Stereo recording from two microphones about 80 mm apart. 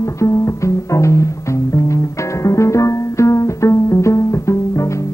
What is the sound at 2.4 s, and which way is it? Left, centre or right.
Music, left.